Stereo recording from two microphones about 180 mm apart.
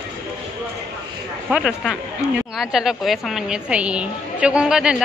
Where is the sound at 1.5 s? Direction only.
5° right (ahead or behind).